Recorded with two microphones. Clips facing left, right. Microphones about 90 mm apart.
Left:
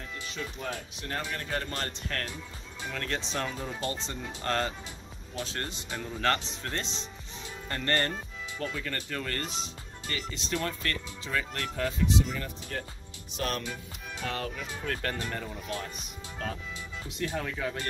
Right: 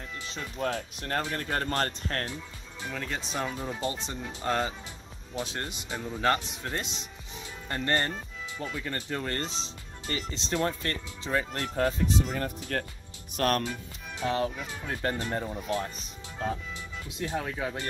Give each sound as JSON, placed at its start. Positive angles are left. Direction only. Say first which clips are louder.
{"t": 1.3, "sound": "speech", "louder": "right 4 dB", "side_deg": -45}
{"t": 2.9, "sound": "speech", "louder": "left 1 dB", "side_deg": -5}
{"t": 11.7, "sound": "speech", "louder": "right 2 dB", "side_deg": -40}
{"t": 14.2, "sound": "speech", "louder": "right 6 dB", "side_deg": -20}
{"t": 17.2, "sound": "speech", "louder": "right 1 dB", "side_deg": -20}